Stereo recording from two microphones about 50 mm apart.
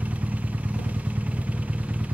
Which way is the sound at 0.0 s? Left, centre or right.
Right.